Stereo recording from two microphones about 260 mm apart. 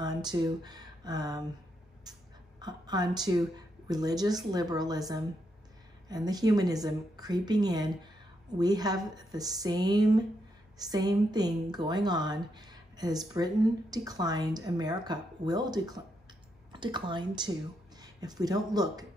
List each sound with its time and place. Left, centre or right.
0.0 s speech: centre
2.1 s a sound: centre
2.6 s a woman's voice: centre